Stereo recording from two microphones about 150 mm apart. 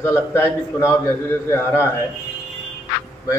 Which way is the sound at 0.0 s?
15° left (ahead or behind).